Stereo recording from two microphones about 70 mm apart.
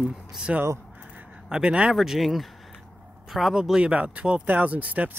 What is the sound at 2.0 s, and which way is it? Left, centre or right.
Speech, centre.